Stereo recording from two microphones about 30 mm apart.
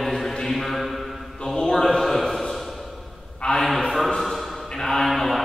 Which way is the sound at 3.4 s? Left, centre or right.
Left.